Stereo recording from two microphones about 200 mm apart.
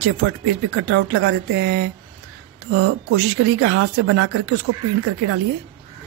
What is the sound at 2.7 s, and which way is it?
Speech, 80° right.